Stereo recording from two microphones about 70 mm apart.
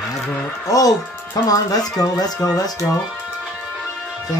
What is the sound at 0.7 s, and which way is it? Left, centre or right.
Speech, left.